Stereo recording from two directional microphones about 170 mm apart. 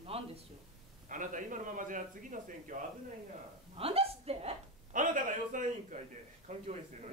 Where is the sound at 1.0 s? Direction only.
50° right (ahead or behind).